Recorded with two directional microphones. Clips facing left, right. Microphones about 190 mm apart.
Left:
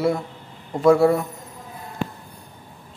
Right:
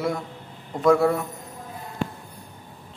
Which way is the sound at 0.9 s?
25° left (ahead or behind).